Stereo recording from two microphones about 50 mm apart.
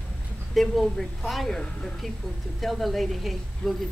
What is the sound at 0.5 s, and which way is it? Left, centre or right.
A woman's voice, centre.